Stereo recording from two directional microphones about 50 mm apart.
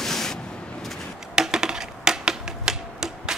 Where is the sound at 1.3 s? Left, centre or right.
Centre.